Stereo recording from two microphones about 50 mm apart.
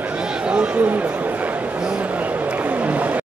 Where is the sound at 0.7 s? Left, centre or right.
Right.